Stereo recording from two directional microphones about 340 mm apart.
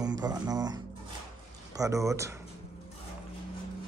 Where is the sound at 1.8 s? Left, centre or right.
Centre.